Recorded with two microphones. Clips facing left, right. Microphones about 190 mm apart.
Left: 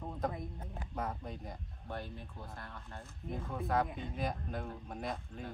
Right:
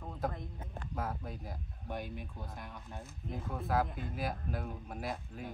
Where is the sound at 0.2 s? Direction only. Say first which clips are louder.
Even; 5° right (ahead or behind).